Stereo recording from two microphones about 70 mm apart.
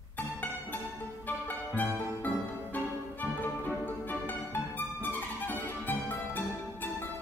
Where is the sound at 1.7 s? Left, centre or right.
Left.